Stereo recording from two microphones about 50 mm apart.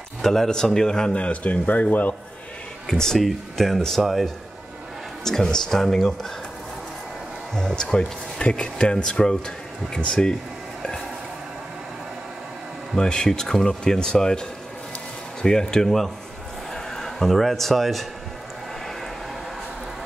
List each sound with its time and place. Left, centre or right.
0.2 s speech: centre
1.1 s speech: left
2.9 s speech: centre
5.2 s speech: centre
7.5 s speech: centre
12.9 s speech: centre
15.4 s speech: centre